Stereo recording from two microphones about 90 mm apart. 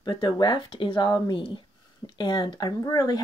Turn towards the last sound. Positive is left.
turn(degrees=40)  # may be behind; listen again after turning